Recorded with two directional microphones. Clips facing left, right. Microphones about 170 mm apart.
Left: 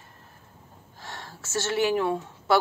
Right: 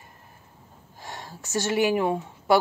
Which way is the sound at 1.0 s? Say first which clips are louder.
Right 2 dB; 15° right (ahead or behind).